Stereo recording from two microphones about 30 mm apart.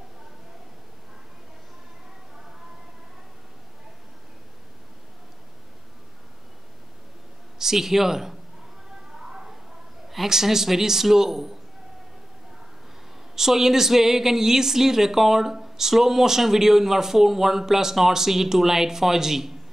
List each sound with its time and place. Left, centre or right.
7.5 s speech: centre
9.2 s a sound: right
10.0 s speech: centre
13.4 s speech: centre